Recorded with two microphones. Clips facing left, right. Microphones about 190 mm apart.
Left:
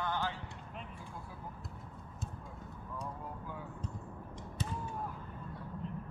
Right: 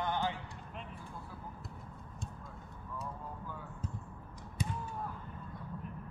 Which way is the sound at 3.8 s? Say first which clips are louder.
Left 1 dB; 5° right (ahead or behind).